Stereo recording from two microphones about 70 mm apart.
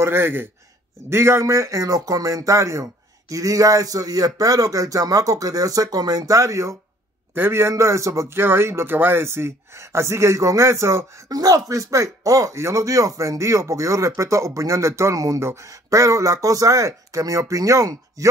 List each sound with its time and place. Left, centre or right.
0.0 s speech: right
7.3 s speech: right
8.4 s speech: right
11.2 s speech: right
15.1 s speech: right